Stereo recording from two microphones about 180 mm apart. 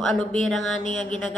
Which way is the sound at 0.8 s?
40° left (ahead or behind).